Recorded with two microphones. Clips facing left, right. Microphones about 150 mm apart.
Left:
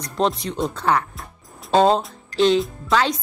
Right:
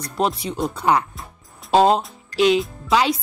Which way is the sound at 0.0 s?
5° right (ahead or behind).